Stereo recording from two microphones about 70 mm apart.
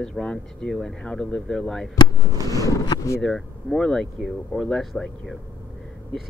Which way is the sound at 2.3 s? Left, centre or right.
Right.